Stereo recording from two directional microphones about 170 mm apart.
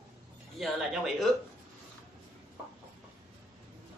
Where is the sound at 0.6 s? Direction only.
Centre (ahead or behind).